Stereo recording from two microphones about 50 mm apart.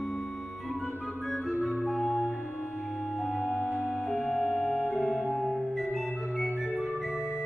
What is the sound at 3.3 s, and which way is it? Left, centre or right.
Music, centre.